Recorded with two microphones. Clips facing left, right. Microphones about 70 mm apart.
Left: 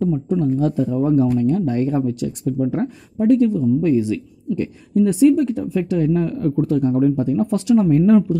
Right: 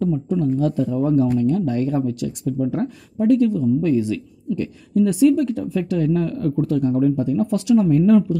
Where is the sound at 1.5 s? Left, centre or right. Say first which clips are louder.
Left 1 dB; left.